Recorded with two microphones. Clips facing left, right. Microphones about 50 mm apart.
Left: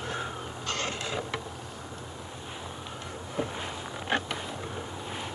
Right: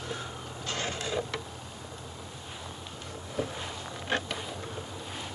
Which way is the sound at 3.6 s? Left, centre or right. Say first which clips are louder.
Left 2 dB; centre.